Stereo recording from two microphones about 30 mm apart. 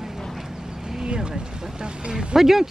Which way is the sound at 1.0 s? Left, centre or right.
Right.